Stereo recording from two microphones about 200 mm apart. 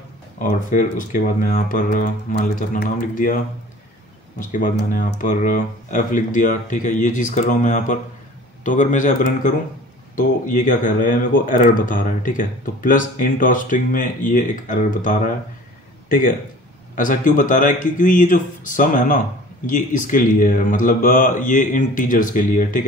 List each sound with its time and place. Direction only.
0.4 s speech: 40° left (ahead or behind)
4.4 s a man's voice: 40° left (ahead or behind)
16.9 s a man's voice: 40° left (ahead or behind)